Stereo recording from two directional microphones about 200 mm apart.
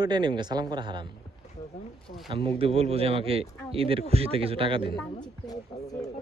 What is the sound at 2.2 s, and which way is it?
Speech, 25° right (ahead or behind).